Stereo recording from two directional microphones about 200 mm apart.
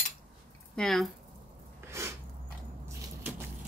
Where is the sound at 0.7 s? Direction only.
Centre (ahead or behind).